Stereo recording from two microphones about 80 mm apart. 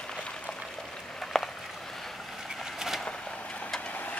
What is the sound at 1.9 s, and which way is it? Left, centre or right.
Boat, centre.